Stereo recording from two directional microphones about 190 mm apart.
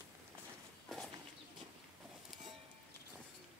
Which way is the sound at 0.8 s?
Centre (ahead or behind).